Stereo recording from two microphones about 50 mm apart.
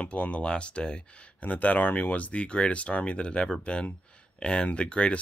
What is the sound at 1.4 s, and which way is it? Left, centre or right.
Speech, left.